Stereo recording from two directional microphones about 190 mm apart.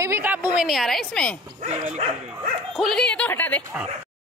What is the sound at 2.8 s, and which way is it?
Speech, centre (ahead or behind).